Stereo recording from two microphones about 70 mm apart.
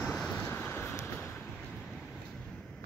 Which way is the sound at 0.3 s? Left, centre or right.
Left.